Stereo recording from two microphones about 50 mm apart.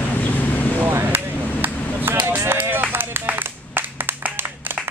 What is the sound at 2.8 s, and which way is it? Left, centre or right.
Clapping, right.